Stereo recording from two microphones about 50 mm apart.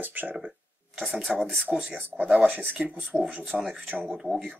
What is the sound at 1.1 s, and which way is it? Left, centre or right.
Speech, centre.